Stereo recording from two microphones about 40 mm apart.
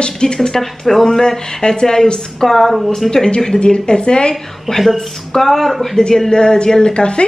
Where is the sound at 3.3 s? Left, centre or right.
Left.